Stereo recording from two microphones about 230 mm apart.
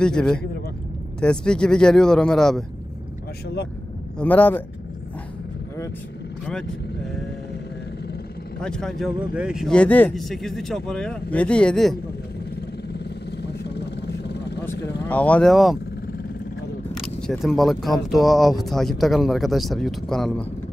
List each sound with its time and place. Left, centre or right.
0.0 s speech: centre
4.2 s speech: centre
8.5 s speech: centre
12.9 s vehicle: left
15.0 s speech: centre
17.0 s speech: centre